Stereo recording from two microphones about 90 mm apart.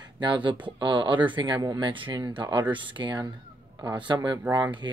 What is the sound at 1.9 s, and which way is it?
A man's voice, 60° right (ahead or behind).